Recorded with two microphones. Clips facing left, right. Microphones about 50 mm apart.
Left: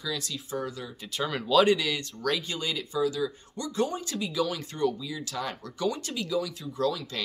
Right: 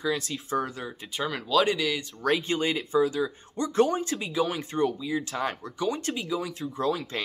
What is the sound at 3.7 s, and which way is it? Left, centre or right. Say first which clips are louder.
Speech: right 6 dB; right.